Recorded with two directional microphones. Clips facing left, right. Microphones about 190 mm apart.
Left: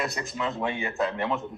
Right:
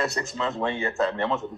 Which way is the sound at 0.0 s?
15° left (ahead or behind).